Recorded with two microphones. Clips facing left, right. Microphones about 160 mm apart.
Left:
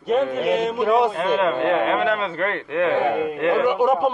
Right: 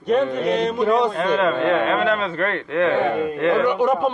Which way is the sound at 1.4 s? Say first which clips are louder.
Right 1 dB; 10° left (ahead or behind).